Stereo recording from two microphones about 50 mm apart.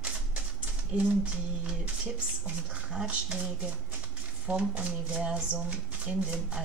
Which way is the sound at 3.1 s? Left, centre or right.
Right.